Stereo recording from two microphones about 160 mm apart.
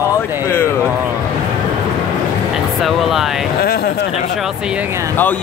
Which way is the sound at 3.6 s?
75° left (ahead or behind).